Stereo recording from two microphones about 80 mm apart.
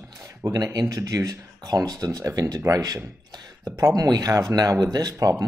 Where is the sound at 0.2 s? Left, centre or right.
Right.